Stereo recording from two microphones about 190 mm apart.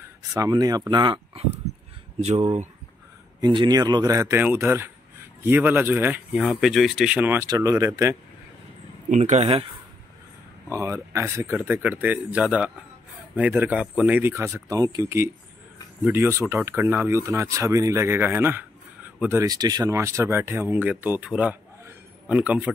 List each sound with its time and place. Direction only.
0.0 s speech: 20° right (ahead or behind); by 2.7 s 35° right (ahead or behind)
3.3 s speech: 25° right (ahead or behind)
9.1 s speech: 40° right (ahead or behind)
10.7 s speech: 15° right (ahead or behind)